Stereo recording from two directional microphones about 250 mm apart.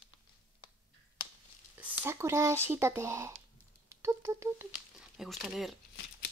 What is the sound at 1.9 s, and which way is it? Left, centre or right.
Speech, centre.